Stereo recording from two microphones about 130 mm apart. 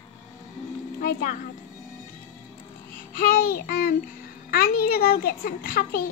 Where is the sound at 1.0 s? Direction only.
90° left.